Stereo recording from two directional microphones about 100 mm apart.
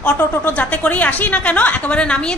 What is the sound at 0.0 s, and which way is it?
A woman's voice, 15° left (ahead or behind).